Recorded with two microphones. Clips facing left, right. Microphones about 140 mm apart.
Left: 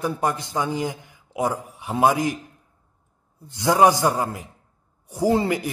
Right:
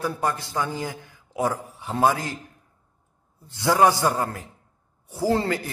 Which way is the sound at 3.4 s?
15° left (ahead or behind).